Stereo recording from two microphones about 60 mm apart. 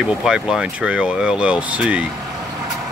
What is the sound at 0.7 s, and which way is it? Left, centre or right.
Speech, right.